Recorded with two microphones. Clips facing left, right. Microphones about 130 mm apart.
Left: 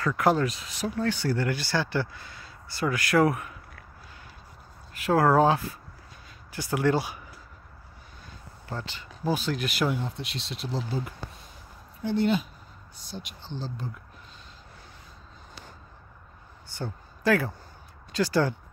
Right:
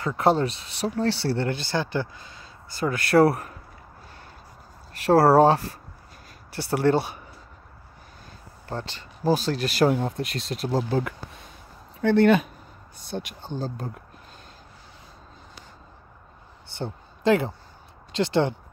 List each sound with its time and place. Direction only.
0.0 s speech: 30° right (ahead or behind)
5.0 s speech: 35° right (ahead or behind)
8.6 s speech: 40° right (ahead or behind)
16.7 s speech: 25° right (ahead or behind)